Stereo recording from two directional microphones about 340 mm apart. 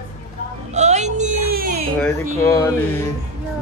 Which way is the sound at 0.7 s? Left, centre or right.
Centre.